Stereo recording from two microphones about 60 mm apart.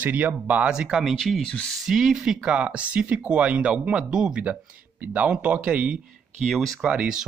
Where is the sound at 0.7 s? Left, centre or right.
Centre.